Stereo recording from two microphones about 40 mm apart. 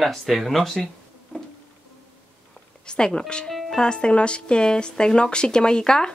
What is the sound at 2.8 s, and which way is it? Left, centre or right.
Speech, left.